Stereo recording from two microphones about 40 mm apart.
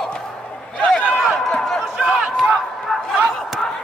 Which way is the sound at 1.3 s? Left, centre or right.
Centre.